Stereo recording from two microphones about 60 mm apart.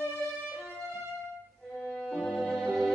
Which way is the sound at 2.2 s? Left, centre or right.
Left.